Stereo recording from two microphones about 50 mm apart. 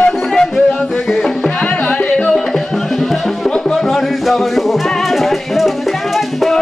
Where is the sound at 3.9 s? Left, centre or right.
Centre.